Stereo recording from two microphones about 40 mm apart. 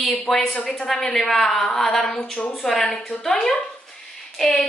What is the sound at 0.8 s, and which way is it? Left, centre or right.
A woman's voice, centre.